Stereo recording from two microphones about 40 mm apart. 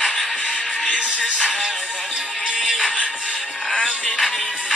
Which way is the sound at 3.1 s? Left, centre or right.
Centre.